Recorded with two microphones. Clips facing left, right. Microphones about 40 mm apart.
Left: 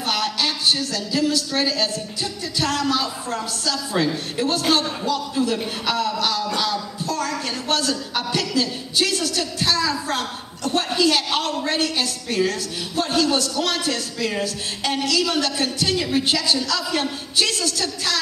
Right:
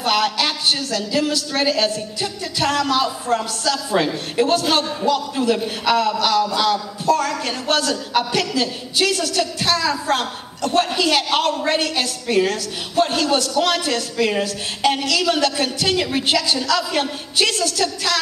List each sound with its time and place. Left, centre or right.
0.0 s a woman's voice: right
5.4 s a woman's voice: right